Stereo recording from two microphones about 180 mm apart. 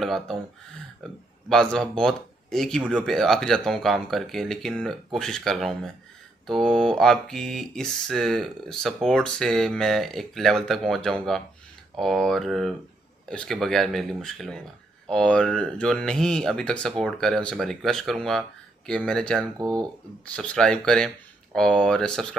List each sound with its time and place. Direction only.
0.0 s speech: centre (ahead or behind)
19.6 s speech: 20° right (ahead or behind)
20.3 s speech: 5° left (ahead or behind)